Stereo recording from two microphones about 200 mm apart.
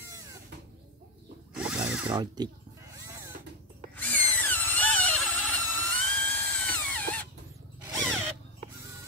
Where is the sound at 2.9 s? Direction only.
15° right (ahead or behind).